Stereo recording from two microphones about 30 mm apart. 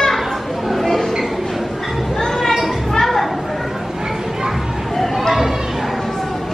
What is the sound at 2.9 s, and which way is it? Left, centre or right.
Chatter, centre.